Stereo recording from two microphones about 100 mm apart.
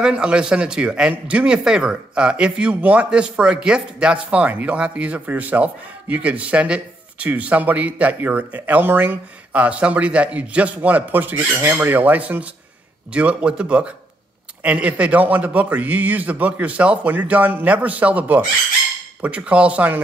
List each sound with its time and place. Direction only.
0.0 s speech: 10° right (ahead or behind)